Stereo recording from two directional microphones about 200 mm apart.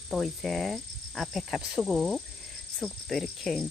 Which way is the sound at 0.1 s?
Centre (ahead or behind).